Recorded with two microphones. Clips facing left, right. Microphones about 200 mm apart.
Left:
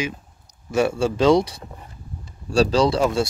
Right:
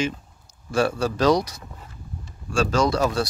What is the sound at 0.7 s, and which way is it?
Speech, 25° left (ahead or behind).